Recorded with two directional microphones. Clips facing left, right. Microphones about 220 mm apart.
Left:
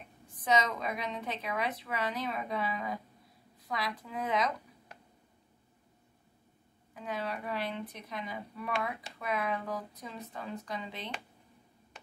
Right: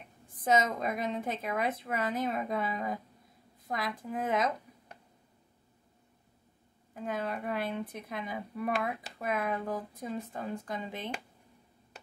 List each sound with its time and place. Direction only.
0.4 s a woman's voice: 50° right (ahead or behind)
6.9 s a woman's voice: 50° right (ahead or behind)